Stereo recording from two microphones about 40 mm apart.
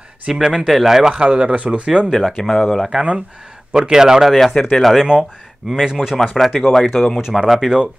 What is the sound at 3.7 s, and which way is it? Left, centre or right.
Speech, centre.